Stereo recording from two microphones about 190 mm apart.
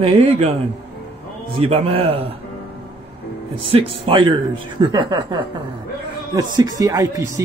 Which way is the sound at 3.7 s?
25° right (ahead or behind).